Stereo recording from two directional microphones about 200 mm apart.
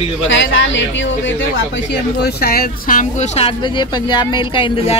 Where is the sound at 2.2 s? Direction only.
50° left (ahead or behind); by 5.0 s 25° left (ahead or behind).